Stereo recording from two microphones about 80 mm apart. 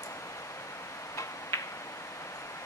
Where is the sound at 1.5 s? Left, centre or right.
Left.